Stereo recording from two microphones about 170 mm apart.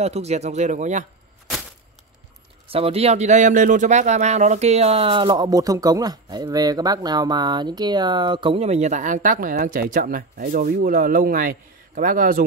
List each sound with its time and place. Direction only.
0.0 s a man's voice: 40° right (ahead or behind)
2.7 s speech: 35° right (ahead or behind); by 12.4 s 55° right (ahead or behind)